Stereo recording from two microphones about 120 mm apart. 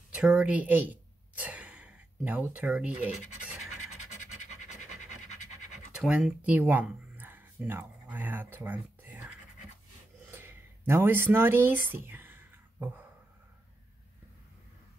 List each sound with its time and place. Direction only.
0.1 s speech: 10° right (ahead or behind)
4.0 s scratch: 90° left
5.9 s speech: 5° right (ahead or behind)
10.3 s a sound: 20° right (ahead or behind)